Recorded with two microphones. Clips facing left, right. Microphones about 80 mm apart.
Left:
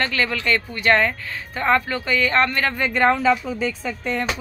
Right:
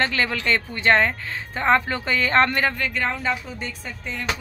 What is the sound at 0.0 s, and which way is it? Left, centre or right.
Speech, right.